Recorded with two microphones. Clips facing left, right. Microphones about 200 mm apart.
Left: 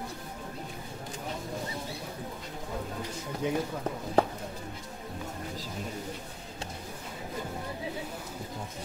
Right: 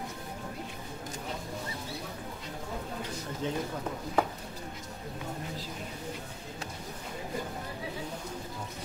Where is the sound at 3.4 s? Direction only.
15° left (ahead or behind).